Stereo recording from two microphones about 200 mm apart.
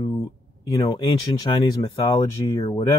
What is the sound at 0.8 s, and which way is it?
Speech, 25° left (ahead or behind).